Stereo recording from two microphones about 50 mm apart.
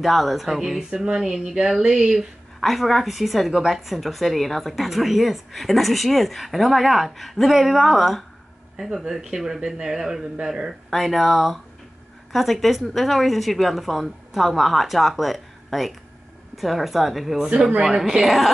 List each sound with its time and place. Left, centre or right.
0.0 s a woman's voice: centre
2.6 s a woman's voice: centre
8.7 s speech: centre
10.9 s a woman's voice: centre
17.5 s speech: right
17.9 s a woman's voice: centre